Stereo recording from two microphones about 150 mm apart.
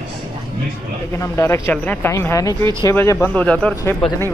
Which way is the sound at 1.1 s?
20° left (ahead or behind).